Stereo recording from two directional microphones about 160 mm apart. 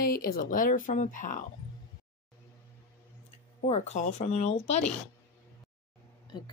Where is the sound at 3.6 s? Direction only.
45° left (ahead or behind).